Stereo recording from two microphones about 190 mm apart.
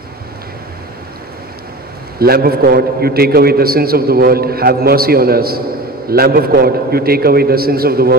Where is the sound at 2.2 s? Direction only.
55° right (ahead or behind).